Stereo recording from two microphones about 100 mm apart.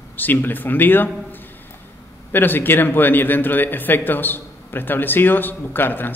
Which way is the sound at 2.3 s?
20° left (ahead or behind).